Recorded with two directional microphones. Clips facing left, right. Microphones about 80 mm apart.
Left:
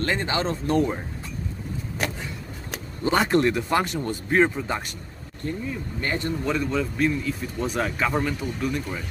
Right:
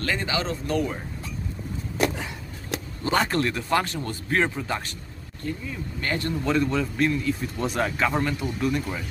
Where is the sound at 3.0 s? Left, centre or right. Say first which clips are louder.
Left 3 dB; centre.